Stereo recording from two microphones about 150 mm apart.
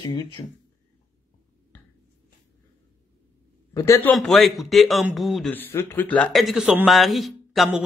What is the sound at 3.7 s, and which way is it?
Speech, 20° left (ahead or behind).